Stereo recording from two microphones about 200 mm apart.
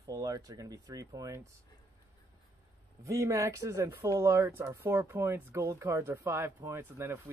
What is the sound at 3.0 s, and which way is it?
Speech, 15° right (ahead or behind).